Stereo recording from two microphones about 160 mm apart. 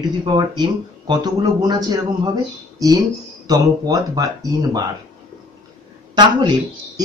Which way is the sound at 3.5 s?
20° right (ahead or behind).